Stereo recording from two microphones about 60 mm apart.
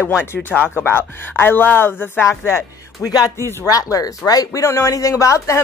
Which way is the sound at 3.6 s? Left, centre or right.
Left.